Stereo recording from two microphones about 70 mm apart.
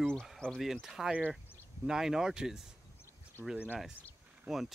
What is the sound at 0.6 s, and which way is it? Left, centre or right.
Speech, centre.